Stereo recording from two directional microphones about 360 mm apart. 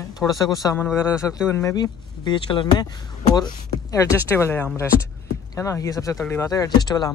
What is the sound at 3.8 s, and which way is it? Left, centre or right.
Speech, centre.